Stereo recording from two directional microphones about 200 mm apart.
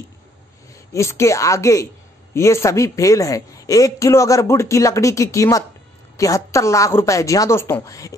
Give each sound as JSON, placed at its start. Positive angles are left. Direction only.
{"t": 0.9, "sound": "a woman's voice", "side_deg": 15}